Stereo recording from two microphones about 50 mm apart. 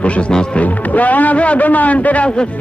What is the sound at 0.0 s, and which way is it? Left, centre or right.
Speech, left.